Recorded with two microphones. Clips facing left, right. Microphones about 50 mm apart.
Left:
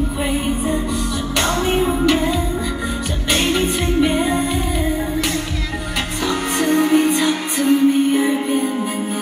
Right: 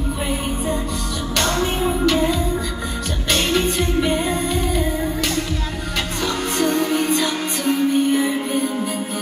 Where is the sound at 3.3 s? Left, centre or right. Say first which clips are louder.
Left 1 dB; left.